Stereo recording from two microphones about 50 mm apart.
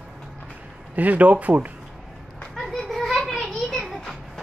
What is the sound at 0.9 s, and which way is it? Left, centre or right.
Speech, right.